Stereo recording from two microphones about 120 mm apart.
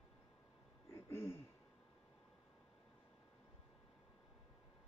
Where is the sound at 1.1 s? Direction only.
20° left (ahead or behind).